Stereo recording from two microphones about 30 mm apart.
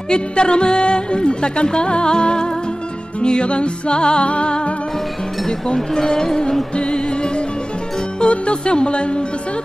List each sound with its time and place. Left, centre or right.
0.1 s music: left
5.9 s music: left
6.7 s music: left